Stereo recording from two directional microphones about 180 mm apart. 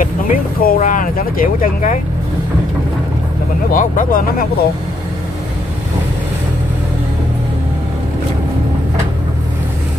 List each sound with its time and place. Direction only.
0.0 s speech: 50° left (ahead or behind)
3.7 s speech: 45° left (ahead or behind)